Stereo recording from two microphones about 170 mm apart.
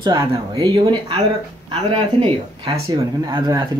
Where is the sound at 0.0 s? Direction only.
25° right (ahead or behind).